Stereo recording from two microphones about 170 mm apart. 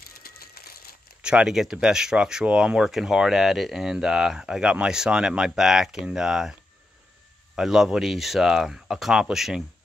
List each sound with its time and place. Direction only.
0.0 s ratchet: 65° left (ahead or behind)
1.2 s speech: 5° right (ahead or behind)
7.5 s speech: centre (ahead or behind)